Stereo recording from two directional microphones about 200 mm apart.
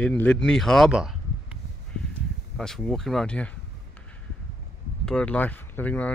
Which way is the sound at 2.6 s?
Centre (ahead or behind).